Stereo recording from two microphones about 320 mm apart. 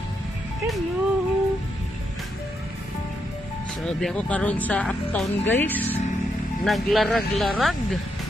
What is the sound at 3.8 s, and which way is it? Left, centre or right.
Speech, centre.